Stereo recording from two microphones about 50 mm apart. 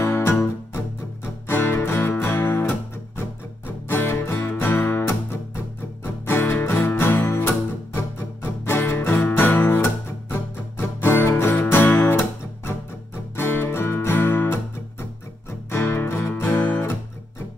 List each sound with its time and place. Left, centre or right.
0.0 s music: left
1.5 s music: left
6.2 s music: left
11.0 s music: left
11.5 s music: left